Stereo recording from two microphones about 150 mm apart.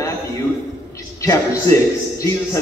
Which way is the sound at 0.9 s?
20° left (ahead or behind).